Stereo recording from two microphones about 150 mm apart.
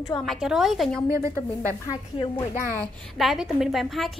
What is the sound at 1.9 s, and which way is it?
Speech, 25° left (ahead or behind).